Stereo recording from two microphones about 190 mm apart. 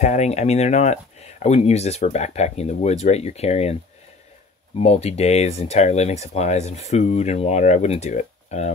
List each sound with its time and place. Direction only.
0.0 s speech: 35° left (ahead or behind)
4.7 s speech: 35° left (ahead or behind)